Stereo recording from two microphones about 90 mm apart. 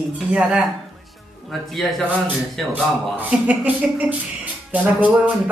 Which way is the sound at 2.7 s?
20° right (ahead or behind).